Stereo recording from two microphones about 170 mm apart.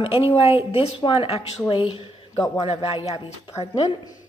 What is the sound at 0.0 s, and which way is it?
A woman's voice, 35° left (ahead or behind).